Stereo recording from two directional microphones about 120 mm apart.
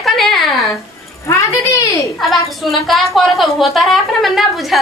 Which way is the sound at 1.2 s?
25° left (ahead or behind).